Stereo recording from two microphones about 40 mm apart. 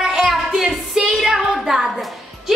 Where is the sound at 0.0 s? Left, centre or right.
Centre.